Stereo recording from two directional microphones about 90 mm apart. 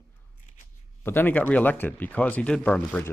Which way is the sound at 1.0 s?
20° left (ahead or behind).